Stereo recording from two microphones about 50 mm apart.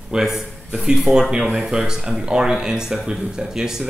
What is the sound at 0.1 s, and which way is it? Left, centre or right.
A man's voice, centre.